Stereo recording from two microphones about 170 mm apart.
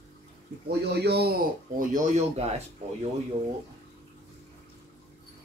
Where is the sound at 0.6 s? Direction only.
75° right (ahead or behind); by 2.6 s 40° right (ahead or behind).